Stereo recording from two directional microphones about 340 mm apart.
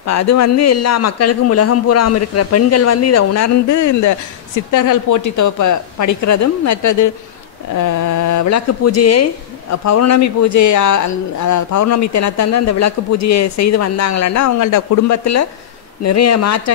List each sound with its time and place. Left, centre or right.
0.0 s a woman's voice: left